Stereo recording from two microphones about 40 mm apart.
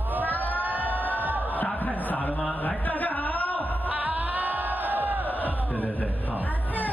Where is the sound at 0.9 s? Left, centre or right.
Left.